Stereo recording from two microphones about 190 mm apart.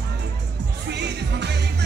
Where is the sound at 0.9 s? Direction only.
65° right (ahead or behind).